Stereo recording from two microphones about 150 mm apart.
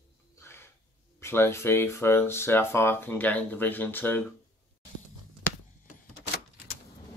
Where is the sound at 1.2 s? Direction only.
15° left (ahead or behind).